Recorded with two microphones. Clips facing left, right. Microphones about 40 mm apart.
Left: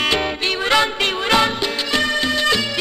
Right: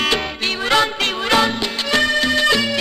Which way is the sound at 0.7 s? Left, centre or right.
Centre.